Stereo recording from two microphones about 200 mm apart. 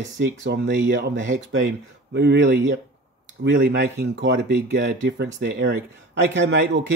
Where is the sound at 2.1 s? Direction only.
60° right (ahead or behind).